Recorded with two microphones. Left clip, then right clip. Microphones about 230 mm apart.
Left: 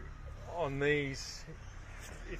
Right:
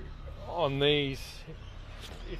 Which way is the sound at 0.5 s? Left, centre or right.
Right.